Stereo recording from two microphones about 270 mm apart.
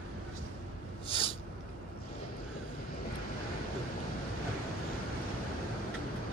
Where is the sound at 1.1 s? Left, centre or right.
Centre.